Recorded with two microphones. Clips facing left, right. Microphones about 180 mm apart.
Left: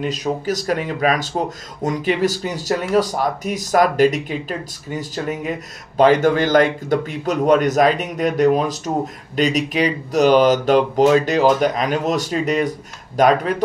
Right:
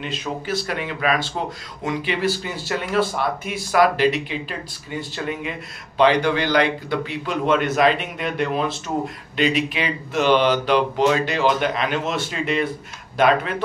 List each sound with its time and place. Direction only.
0.0 s speech: 40° left (ahead or behind)